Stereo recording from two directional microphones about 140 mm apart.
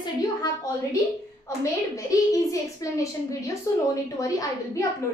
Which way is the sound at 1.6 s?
25° left (ahead or behind).